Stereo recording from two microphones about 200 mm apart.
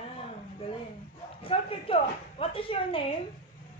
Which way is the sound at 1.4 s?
25° left (ahead or behind).